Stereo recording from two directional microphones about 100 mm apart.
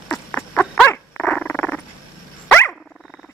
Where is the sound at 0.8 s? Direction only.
15° left (ahead or behind).